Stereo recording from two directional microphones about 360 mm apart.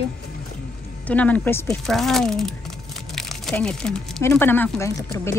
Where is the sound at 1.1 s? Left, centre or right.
Centre.